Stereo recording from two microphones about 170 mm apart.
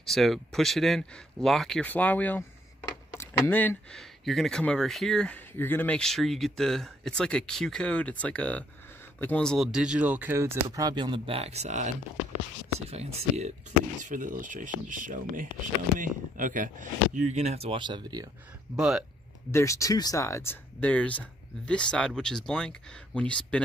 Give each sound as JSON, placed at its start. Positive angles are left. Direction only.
{"t": 0.0, "sound": "speech", "side_deg": 0}
{"t": 12.9, "sound": "speech", "side_deg": -40}
{"t": 14.0, "sound": "speech", "side_deg": -50}
{"t": 18.8, "sound": "speech", "side_deg": -5}
{"t": 19.5, "sound": "speech", "side_deg": 15}